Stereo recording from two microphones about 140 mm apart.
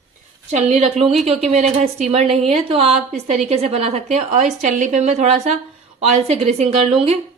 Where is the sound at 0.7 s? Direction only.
50° right (ahead or behind).